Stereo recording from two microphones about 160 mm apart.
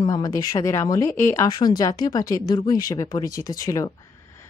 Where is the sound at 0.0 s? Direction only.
25° left (ahead or behind).